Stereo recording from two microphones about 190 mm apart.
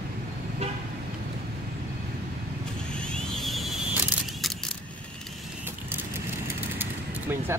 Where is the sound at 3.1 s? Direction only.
Centre (ahead or behind).